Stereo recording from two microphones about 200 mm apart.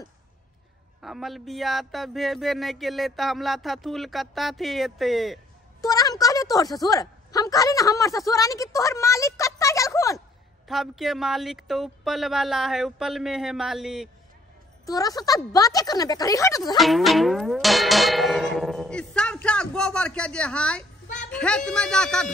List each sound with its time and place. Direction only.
1.0 s speech: centre (ahead or behind)
5.8 s a woman's voice: 20° left (ahead or behind)
10.7 s speech: centre (ahead or behind)
14.9 s speech: 20° left (ahead or behind)
16.7 s music: centre (ahead or behind)
21.3 s speech: 5° left (ahead or behind)